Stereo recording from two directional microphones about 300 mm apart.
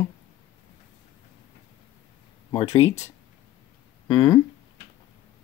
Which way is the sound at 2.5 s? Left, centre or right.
Left.